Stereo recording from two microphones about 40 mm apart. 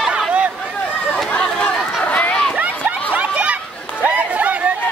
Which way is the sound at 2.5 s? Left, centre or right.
Right.